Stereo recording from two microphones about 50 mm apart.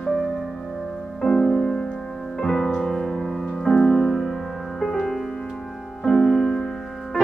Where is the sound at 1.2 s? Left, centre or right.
Centre.